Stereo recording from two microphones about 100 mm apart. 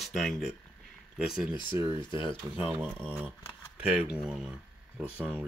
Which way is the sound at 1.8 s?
25° right (ahead or behind).